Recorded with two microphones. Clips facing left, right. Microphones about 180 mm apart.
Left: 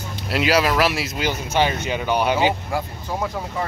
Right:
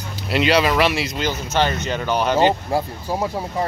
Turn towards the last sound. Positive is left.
turn(degrees=-30)  # may be behind; listen again after turning